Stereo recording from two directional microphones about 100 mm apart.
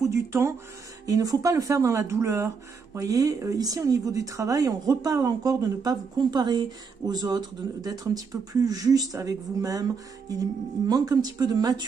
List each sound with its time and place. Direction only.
0.1 s speech: 30° right (ahead or behind)